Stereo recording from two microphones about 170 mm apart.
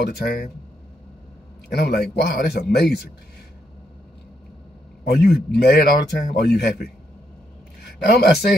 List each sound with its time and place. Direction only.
0.0 s speech: 65° left (ahead or behind)
1.7 s speech: 70° left (ahead or behind)
5.1 s speech: 70° left (ahead or behind)
8.1 s speech: 65° left (ahead or behind)